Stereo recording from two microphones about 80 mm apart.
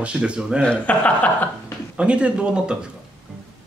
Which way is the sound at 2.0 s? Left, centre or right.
Centre.